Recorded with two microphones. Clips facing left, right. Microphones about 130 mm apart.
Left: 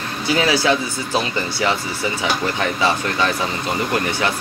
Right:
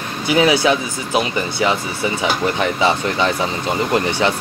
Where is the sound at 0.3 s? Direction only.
20° right (ahead or behind).